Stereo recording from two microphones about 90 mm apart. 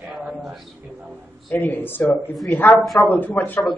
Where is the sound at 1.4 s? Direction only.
20° left (ahead or behind).